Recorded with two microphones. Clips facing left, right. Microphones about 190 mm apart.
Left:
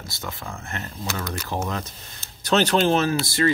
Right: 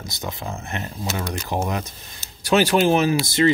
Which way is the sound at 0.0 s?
20° right (ahead or behind).